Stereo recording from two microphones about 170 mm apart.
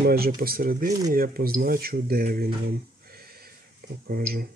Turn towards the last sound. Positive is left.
turn(degrees=-60)  # may be behind; listen again after turning